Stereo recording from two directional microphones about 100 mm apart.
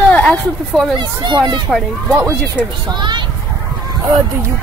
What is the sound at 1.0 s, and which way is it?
Speech, 50° right (ahead or behind).